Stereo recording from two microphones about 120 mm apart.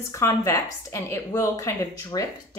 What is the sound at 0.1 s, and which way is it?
A woman's voice, 25° left (ahead or behind).